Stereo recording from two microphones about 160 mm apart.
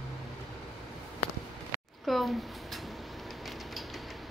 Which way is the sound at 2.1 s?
Centre (ahead or behind).